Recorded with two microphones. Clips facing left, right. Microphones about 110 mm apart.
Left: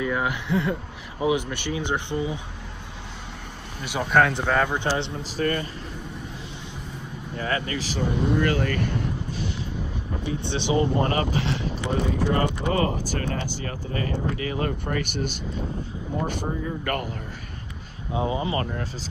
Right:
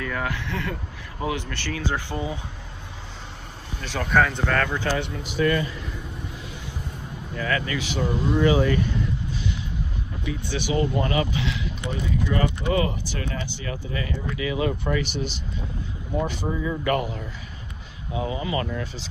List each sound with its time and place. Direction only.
0.0 s speech: 15° left (ahead or behind)
3.8 s speech: 10° left (ahead or behind)
4.1 s speech: centre (ahead or behind)
4.5 s speech: 15° left (ahead or behind)
4.8 s a man's voice: 30° left (ahead or behind)
7.3 s a man's voice: 30° left (ahead or behind)
8.3 s speech: 60° left (ahead or behind)
10.2 s speech: 25° left (ahead or behind)
11.1 s a man's voice: 40° left (ahead or behind)
16.4 s speech: 90° right
16.8 s speech: 50° left (ahead or behind)
18.1 s speech: 30° left (ahead or behind)
18.6 s speech: 40° left (ahead or behind)